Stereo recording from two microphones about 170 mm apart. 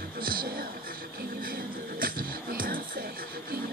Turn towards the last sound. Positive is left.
turn(degrees=-60)  # may be behind; listen again after turning